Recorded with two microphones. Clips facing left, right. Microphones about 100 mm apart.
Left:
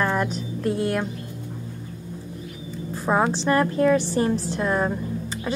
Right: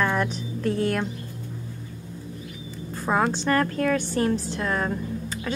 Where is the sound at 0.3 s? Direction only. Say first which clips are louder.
Left 1 dB; centre (ahead or behind).